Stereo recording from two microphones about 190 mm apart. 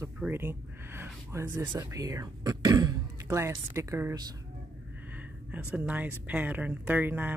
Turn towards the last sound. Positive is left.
turn(degrees=-10)  # may be behind; listen again after turning